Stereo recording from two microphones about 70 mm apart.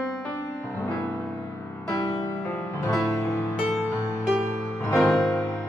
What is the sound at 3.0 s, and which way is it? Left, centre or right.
Music, left.